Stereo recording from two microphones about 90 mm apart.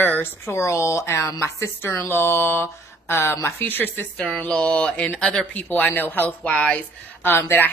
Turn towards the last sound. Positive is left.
turn(degrees=25)  # may be behind; listen again after turning